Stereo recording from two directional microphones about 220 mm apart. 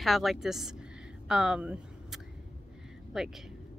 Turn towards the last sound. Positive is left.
turn(degrees=0)  # may be behind; listen again after turning